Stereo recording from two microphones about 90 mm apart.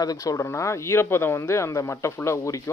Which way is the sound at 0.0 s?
40° left (ahead or behind).